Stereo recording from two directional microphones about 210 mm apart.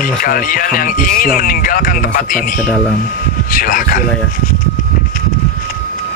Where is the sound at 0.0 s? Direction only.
40° left (ahead or behind).